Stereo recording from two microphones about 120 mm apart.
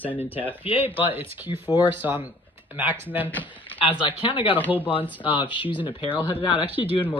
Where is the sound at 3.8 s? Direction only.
45° left (ahead or behind).